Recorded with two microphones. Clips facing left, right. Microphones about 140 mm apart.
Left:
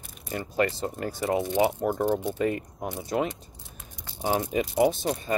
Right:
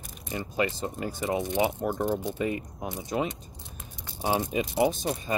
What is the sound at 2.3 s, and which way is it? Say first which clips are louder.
Speech: left 3 dB; 15° right (ahead or behind).